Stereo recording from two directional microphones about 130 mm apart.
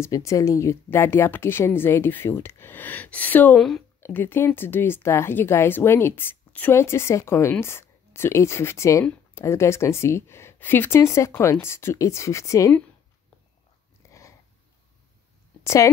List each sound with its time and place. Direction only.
0.0 s a woman's voice: 25° left (ahead or behind)
14.0 s a sound: 25° left (ahead or behind)
15.6 s a woman's voice: 25° left (ahead or behind)